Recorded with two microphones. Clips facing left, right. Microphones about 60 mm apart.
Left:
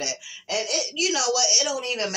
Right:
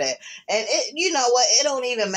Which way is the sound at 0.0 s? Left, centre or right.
Right.